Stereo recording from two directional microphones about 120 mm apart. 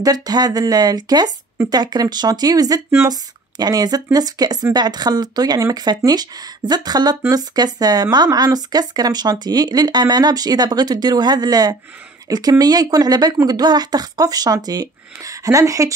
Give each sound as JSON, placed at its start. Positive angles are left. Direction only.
{"t": 0.0, "sound": "speech", "side_deg": -30}